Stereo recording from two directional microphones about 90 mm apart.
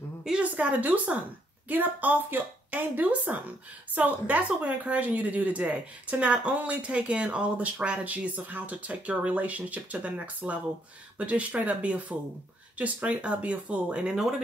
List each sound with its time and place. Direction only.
0.2 s a woman's voice: 10° right (ahead or behind)